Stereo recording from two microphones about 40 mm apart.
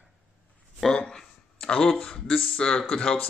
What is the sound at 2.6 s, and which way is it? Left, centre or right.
Speech, centre.